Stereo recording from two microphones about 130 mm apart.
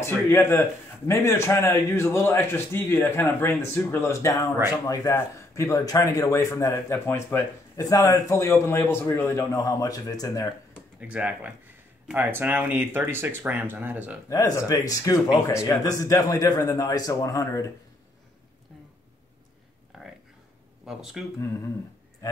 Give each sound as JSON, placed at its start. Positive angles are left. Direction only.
{"t": 0.0, "sound": "speech", "side_deg": 20}
{"t": 11.0, "sound": "speech", "side_deg": -10}
{"t": 14.3, "sound": "speech", "side_deg": 30}
{"t": 19.9, "sound": "a sound", "side_deg": 0}
{"t": 20.8, "sound": "speech", "side_deg": -5}
{"t": 22.2, "sound": "speech", "side_deg": 25}